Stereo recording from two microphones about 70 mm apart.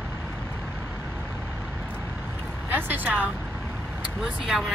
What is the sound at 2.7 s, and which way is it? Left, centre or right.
Vehicle, right.